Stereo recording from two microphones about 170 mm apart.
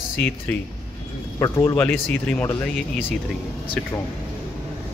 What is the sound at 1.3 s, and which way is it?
A man's voice, 20° left (ahead or behind).